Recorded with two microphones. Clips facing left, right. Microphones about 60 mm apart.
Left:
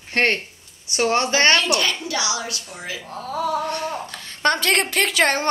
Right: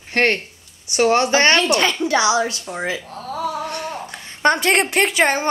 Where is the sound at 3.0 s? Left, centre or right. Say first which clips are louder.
Even; centre.